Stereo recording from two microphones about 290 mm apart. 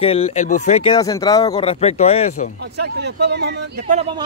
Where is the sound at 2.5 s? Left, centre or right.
Right.